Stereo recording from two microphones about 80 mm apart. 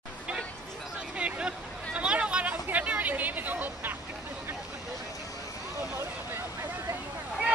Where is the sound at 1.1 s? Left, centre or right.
Centre.